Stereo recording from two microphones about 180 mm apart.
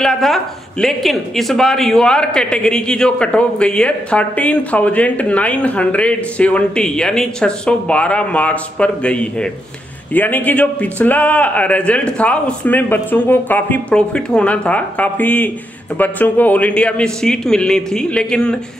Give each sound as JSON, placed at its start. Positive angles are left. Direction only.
{"t": 0.0, "sound": "a man's voice", "side_deg": 0}